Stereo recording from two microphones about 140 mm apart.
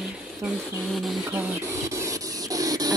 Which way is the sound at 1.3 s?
20° right (ahead or behind).